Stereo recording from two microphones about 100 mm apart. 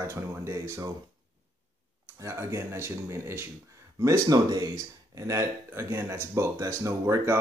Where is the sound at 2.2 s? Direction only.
30° right (ahead or behind).